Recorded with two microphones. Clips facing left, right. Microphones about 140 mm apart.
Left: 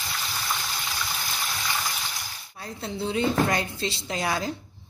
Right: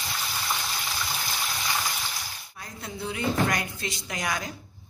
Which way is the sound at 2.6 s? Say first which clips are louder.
Left 5 dB; 30° left (ahead or behind).